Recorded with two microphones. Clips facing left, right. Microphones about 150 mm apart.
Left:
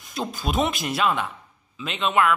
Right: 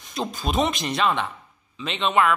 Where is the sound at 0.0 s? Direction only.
Centre (ahead or behind).